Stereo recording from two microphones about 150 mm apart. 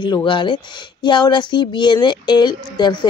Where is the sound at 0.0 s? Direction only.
30° left (ahead or behind).